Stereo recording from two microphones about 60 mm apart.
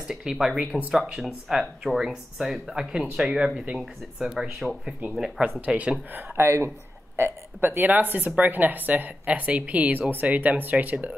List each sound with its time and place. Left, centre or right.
0.0 s speech: centre
1.2 s speech: centre
5.4 s speech: right
6.3 s speech: right
7.6 s speech: right